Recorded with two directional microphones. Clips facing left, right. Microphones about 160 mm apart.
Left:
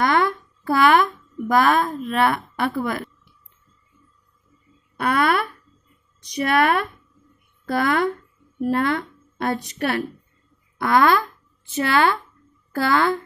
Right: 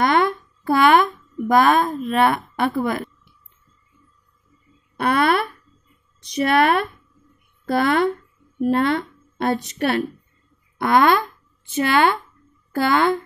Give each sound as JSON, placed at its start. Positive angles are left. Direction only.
{"t": 0.0, "sound": "a woman's voice", "side_deg": -25}
{"t": 4.9, "sound": "a sound", "side_deg": -30}
{"t": 6.2, "sound": "a woman's voice", "side_deg": -25}